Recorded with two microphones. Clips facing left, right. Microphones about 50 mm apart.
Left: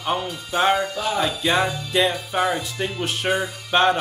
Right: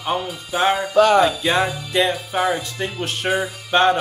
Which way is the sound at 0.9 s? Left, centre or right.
Right.